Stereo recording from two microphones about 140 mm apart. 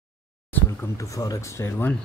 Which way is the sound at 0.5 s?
20° left (ahead or behind).